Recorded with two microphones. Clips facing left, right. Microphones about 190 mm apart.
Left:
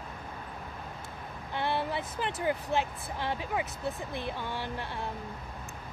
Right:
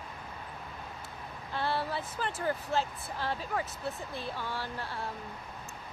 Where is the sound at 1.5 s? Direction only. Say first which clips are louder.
Left 1 dB; 20° left (ahead or behind).